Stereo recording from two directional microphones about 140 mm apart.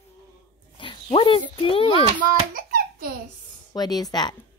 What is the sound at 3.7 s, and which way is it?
Speech, 30° left (ahead or behind).